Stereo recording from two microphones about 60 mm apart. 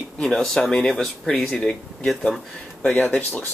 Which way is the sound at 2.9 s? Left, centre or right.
Left.